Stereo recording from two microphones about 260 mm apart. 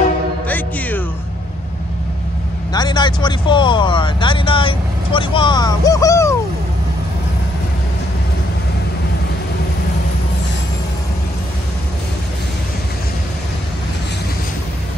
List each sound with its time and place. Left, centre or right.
0.5 s music: centre
2.7 s speech: centre